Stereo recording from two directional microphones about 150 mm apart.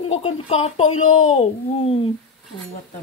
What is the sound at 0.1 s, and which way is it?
A child's voice, 45° left (ahead or behind).